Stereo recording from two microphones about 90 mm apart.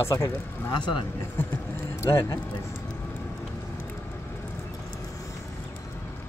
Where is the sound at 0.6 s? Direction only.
55° left (ahead or behind).